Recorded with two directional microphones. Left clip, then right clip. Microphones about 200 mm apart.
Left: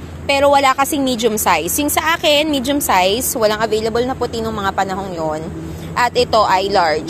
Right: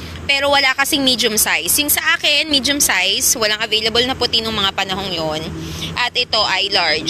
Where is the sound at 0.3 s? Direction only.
15° left (ahead or behind).